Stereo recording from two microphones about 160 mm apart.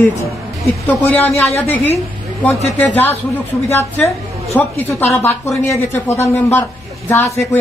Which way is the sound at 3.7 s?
15° left (ahead or behind).